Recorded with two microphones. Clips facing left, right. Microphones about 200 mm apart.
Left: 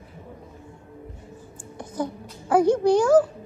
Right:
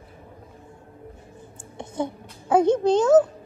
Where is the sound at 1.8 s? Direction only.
25° right (ahead or behind).